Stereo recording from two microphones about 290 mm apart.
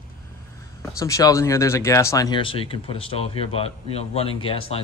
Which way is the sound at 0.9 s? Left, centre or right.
Centre.